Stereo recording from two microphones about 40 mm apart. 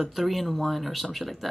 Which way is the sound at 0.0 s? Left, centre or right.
Centre.